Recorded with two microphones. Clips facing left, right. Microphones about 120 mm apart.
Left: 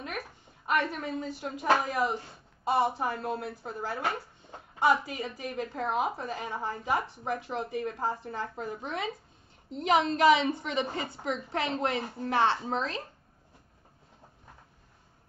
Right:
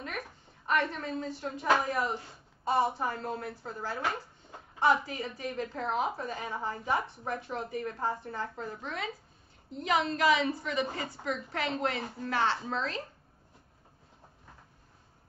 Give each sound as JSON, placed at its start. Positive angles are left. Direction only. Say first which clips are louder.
{"t": 0.7, "sound": "speech", "louder": "left 1 dB", "side_deg": 10}
{"t": 5.0, "sound": "a woman's voice", "louder": "left 1 dB", "side_deg": 20}